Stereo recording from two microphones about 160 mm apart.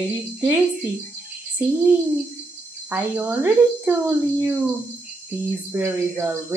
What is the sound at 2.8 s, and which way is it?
Speech, 10° right (ahead or behind).